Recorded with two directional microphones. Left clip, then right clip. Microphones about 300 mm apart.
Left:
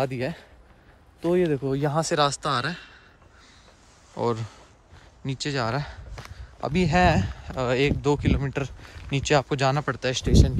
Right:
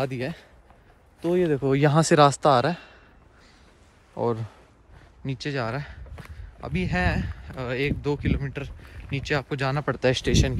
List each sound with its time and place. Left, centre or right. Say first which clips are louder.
0.0 s speech: left 2 dB; centre
1.6 s speech: right 4 dB; centre
4.2 s speech: even; centre
9.9 s speech: right 2 dB; right